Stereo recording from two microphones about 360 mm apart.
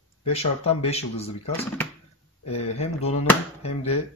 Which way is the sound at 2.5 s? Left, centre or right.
Centre.